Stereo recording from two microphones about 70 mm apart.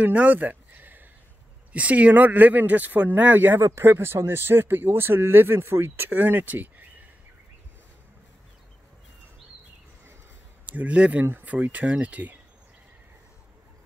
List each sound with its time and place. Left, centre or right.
0.0 s a sound: right
1.7 s speech: centre
3.6 s speech: right
10.6 s speech: right